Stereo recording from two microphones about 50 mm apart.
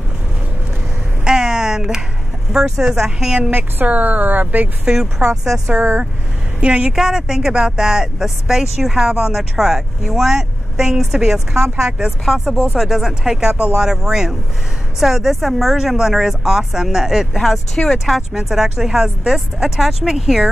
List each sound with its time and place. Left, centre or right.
1.2 s a sound: centre
2.5 s speech: centre
3.5 s speech: right
4.8 s speech: centre
5.7 s speech: right
6.6 s a woman's voice: right
6.9 s speech: centre